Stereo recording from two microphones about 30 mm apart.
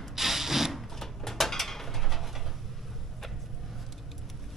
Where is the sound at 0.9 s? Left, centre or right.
Centre.